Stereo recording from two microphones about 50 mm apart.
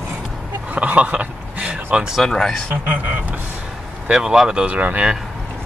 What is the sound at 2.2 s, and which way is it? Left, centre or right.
Speech, centre.